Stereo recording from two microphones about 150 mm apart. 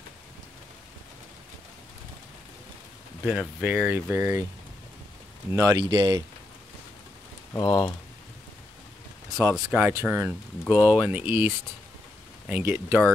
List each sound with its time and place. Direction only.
3.3 s speech: 5° right (ahead or behind)
5.5 s speech: 20° right (ahead or behind)
7.5 s speech: 25° left (ahead or behind)
9.5 s speech: 5° right (ahead or behind)